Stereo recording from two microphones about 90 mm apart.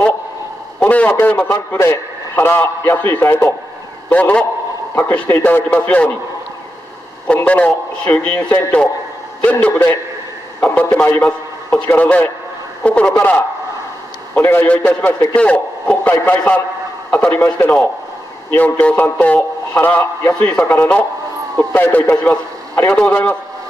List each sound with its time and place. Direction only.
0.8 s a man's voice: 20° left (ahead or behind)
4.1 s a man's voice: 15° left (ahead or behind)
7.4 s a man's voice: 15° left (ahead or behind)
8.4 s a man's voice: 30° left (ahead or behind)
9.4 s a man's voice: 15° left (ahead or behind)
14.3 s a man's voice: 25° left (ahead or behind)
14.7 s a man's voice: 15° left (ahead or behind)
18.5 s a man's voice: 15° left (ahead or behind)